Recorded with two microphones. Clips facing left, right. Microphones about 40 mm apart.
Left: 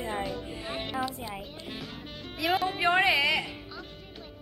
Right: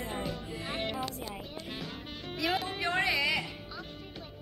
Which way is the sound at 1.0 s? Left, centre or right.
Centre.